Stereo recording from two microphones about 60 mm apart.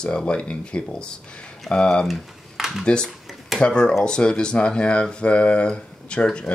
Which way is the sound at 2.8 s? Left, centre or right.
Centre.